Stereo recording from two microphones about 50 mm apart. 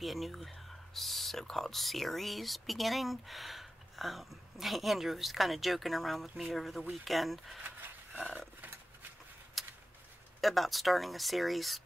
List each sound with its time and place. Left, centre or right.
0.0 s speech: centre
7.6 s wild animals: right
9.6 s a sound: centre
10.4 s speech: centre